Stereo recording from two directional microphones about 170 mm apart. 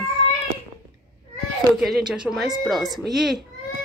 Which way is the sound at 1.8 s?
Centre (ahead or behind).